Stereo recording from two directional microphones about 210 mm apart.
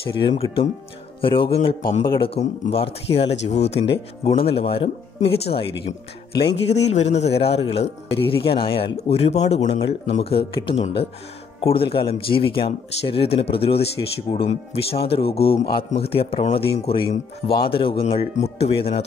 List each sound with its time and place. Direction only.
0.0 s a man's voice: 25° left (ahead or behind)
6.9 s a man's voice: 30° left (ahead or behind)